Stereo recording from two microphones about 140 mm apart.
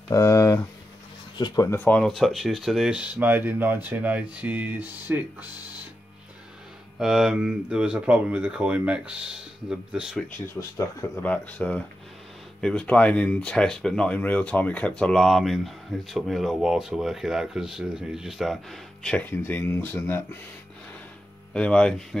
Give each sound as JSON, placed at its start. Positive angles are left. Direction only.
{"t": 0.1, "sound": "speech", "side_deg": 20}
{"t": 1.8, "sound": "speech", "side_deg": 10}
{"t": 7.0, "sound": "speech", "side_deg": 0}
{"t": 10.2, "sound": "speech", "side_deg": 20}
{"t": 11.2, "sound": "speech", "side_deg": 10}
{"t": 21.5, "sound": "speech", "side_deg": 10}